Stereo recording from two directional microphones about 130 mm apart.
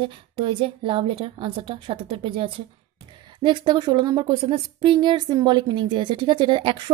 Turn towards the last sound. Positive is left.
turn(degrees=-35)  # may be behind; listen again after turning